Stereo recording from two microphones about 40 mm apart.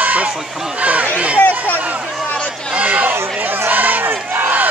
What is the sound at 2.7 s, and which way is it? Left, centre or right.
Chatter, right.